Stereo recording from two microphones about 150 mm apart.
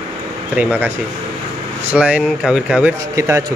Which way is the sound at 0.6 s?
15° right (ahead or behind).